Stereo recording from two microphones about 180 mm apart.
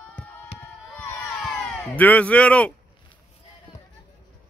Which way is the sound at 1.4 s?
Centre (ahead or behind).